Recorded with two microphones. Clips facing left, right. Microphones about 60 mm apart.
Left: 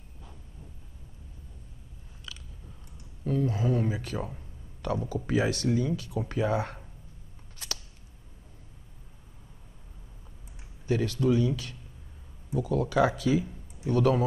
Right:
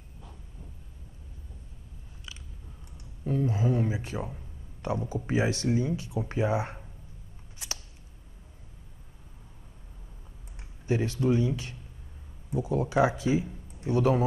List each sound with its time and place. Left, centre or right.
2.3 s biting: right
3.3 s speech: right
4.2 s speech: centre
5.1 s speech: right
7.5 s a sound: right
10.9 s speech: right